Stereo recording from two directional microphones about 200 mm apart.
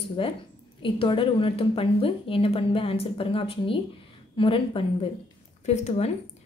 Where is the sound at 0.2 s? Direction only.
25° left (ahead or behind).